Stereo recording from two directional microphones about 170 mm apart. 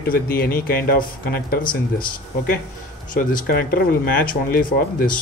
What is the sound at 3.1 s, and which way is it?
Speech, 50° left (ahead or behind).